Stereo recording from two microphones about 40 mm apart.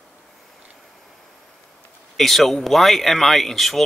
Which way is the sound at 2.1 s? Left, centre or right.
Centre.